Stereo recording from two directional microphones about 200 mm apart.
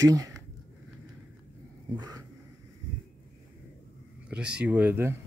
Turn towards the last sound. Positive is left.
turn(degrees=-10)  # may be behind; listen again after turning